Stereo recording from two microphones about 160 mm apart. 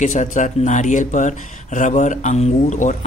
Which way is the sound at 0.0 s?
50° left (ahead or behind).